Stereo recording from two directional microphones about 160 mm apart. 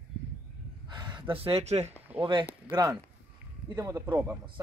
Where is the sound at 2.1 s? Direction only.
30° right (ahead or behind); by 4.4 s 10° right (ahead or behind).